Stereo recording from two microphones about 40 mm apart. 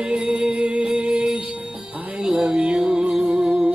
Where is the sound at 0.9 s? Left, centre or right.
Right.